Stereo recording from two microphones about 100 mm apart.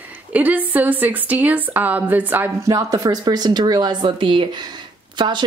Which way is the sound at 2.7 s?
35° right (ahead or behind).